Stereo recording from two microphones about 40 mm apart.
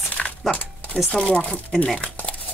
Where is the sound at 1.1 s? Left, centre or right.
Left.